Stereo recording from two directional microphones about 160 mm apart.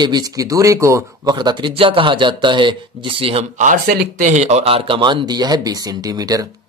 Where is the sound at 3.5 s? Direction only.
55° right (ahead or behind).